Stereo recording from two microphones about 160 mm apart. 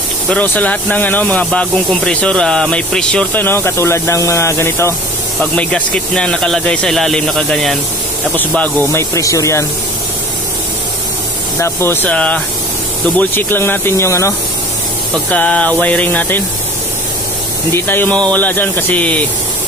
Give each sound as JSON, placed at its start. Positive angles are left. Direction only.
{"t": 0.3, "sound": "speech", "side_deg": 10}
{"t": 8.4, "sound": "speech", "side_deg": 15}
{"t": 11.6, "sound": "speech", "side_deg": 15}
{"t": 15.3, "sound": "speech", "side_deg": 10}
{"t": 17.7, "sound": "speech", "side_deg": 10}